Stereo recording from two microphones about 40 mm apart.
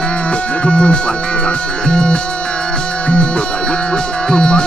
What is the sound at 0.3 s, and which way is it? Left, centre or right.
Music, left.